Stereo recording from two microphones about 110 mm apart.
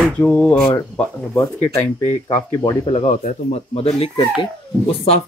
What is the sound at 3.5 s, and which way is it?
Speech, 70° left (ahead or behind).